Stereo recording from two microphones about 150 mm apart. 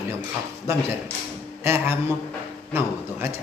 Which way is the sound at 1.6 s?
15° right (ahead or behind).